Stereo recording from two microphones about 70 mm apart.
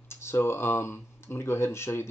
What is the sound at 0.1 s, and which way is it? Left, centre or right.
Speech, left.